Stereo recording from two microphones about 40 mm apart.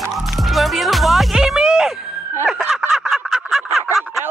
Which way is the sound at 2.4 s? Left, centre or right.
Right.